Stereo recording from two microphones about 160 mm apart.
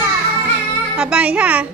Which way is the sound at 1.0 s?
5° right (ahead or behind).